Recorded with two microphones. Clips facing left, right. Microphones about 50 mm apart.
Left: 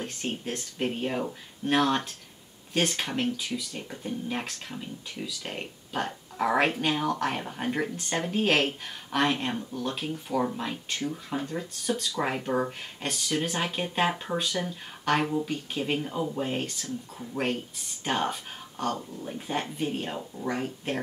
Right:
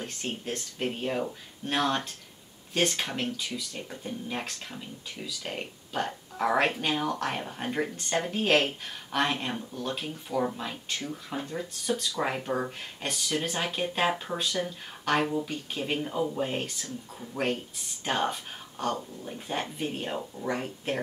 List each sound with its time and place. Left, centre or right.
0.0 s speech: centre